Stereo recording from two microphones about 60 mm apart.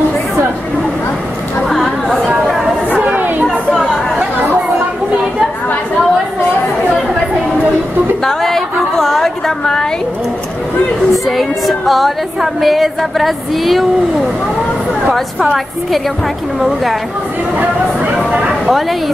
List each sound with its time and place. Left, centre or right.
1.7 s chatter: centre
3.1 s chatter: right
3.4 s chatter: centre
8.2 s a sound: centre
11.2 s speech: centre
18.5 s speech: centre